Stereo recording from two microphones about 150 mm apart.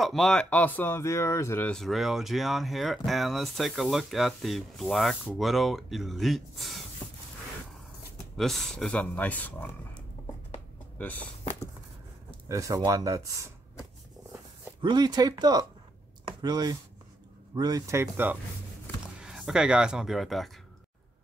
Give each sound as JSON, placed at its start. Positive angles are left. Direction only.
{"t": 0.0, "sound": "speech", "side_deg": 0}
{"t": 7.0, "sound": "a sound", "side_deg": 0}
{"t": 8.4, "sound": "speech", "side_deg": 0}
{"t": 12.4, "sound": "speech", "side_deg": -20}
{"t": 14.8, "sound": "speech", "side_deg": -30}